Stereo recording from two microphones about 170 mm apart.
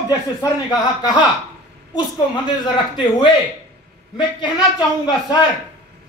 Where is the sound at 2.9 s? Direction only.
25° left (ahead or behind).